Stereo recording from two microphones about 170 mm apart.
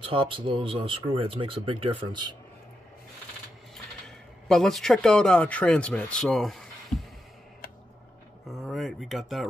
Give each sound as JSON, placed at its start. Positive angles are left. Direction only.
{"t": 0.0, "sound": "speech", "side_deg": -30}
{"t": 4.5, "sound": "speech", "side_deg": 0}
{"t": 8.5, "sound": "speech", "side_deg": 0}